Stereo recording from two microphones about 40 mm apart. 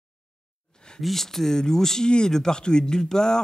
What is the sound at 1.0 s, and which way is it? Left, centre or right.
A man's voice, centre.